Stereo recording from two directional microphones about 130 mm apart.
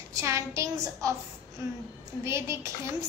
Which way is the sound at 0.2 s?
20° right (ahead or behind).